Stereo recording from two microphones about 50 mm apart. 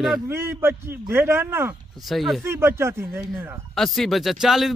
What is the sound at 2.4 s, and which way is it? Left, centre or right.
Speech, right.